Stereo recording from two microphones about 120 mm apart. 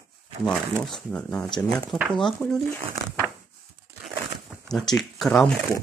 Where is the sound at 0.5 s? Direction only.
5° left (ahead or behind).